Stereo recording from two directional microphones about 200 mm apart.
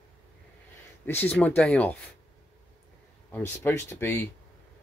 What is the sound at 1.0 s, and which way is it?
Speech, 10° left (ahead or behind).